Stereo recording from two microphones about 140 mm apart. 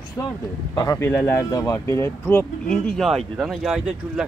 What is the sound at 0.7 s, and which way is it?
Speech, 30° left (ahead or behind).